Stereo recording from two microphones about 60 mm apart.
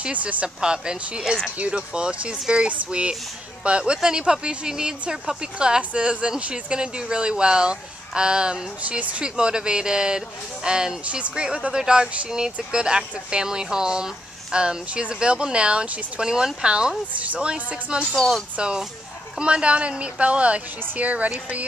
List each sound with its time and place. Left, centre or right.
0.0 s speech: right
0.6 s speech: centre